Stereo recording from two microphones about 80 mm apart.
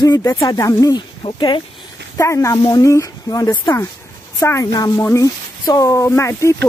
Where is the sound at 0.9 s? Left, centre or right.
Left.